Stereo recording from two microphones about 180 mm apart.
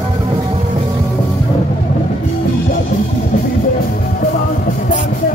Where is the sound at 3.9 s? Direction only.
50° left (ahead or behind).